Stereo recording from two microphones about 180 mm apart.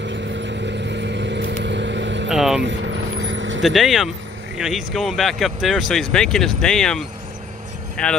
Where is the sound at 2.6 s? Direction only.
85° right.